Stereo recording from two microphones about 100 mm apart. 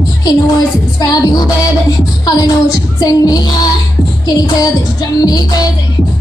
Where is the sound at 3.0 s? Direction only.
40° left (ahead or behind).